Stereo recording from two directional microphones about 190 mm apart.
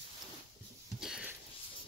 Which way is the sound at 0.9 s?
5° right (ahead or behind).